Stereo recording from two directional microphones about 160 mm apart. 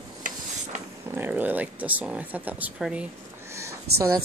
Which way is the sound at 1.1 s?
10° right (ahead or behind).